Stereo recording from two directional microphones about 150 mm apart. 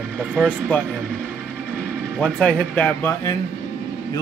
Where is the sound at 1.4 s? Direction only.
5° left (ahead or behind).